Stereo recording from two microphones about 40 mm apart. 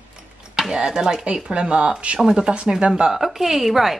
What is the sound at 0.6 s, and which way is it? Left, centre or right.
A woman's voice, centre.